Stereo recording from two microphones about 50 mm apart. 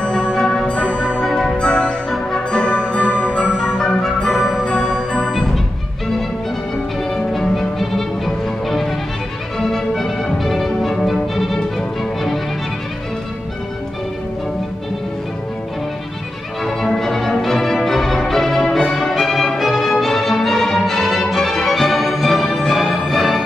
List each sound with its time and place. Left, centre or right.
0.0 s music: centre
4.6 s music: centre
7.2 s violin: centre
8.6 s music: centre
16.6 s music: centre